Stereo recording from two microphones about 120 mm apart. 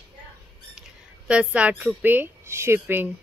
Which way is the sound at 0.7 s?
5° right (ahead or behind).